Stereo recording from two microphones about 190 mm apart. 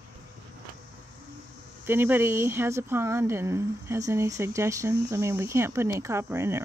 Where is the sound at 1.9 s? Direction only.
10° right (ahead or behind).